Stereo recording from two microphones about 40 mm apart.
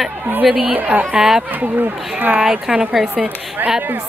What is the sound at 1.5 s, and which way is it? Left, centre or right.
Speech, right.